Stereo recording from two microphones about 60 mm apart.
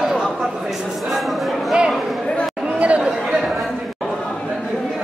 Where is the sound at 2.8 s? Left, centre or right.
Right.